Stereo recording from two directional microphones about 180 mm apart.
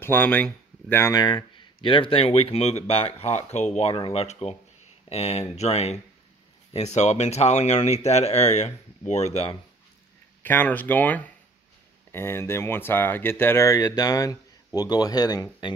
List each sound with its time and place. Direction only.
0.0 s speech: 10° left (ahead or behind); by 9.6 s 35° left (ahead or behind)
10.4 s speech: 10° left (ahead or behind)